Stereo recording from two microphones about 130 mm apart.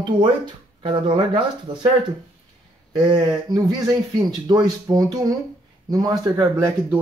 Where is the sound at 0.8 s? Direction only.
40° right (ahead or behind).